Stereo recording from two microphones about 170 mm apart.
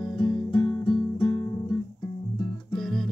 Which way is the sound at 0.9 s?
20° left (ahead or behind).